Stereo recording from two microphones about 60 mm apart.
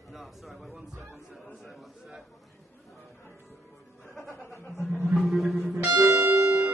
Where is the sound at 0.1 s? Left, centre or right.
Centre.